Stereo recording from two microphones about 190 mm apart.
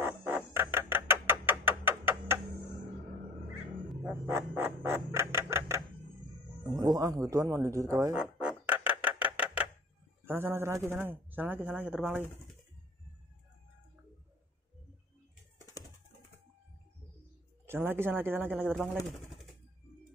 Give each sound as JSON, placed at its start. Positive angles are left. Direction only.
{"t": 0.0, "sound": "chicken", "side_deg": -10}
{"t": 0.5, "sound": "a sound", "side_deg": -10}
{"t": 3.9, "sound": "a sound", "side_deg": -10}
{"t": 6.6, "sound": "speech", "side_deg": -20}
{"t": 8.2, "sound": "music", "side_deg": -5}
{"t": 10.2, "sound": "speech", "side_deg": -10}
{"t": 17.6, "sound": "speech", "side_deg": -10}